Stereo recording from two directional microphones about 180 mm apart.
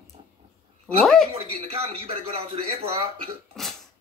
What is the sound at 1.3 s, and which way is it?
A man's voice, 30° right (ahead or behind).